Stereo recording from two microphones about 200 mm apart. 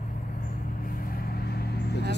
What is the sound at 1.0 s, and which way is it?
Vehicle, 45° left (ahead or behind).